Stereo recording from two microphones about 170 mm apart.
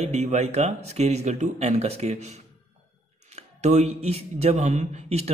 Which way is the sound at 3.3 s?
40° right (ahead or behind).